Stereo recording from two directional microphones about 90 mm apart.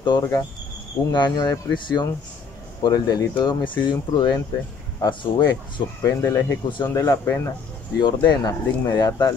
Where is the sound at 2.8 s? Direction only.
45° left (ahead or behind); by 5.8 s 65° left (ahead or behind).